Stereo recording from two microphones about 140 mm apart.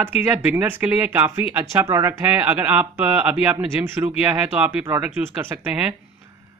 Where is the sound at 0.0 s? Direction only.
15° right (ahead or behind).